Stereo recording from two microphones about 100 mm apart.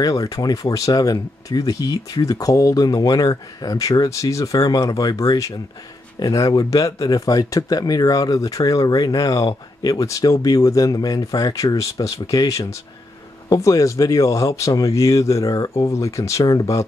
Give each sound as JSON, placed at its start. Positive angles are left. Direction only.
{"t": 0.0, "sound": "speech", "side_deg": 35}